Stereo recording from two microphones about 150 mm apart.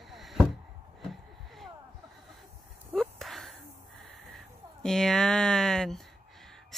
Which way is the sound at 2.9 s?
Centre (ahead or behind).